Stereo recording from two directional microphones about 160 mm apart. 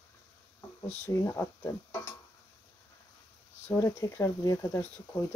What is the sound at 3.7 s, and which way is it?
Speech, 15° left (ahead or behind).